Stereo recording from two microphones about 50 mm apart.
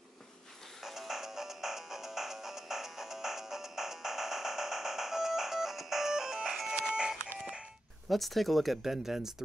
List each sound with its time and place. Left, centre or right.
0.8 s music: centre
6.7 s a sound: centre
7.3 s music: centre
8.1 s speech: centre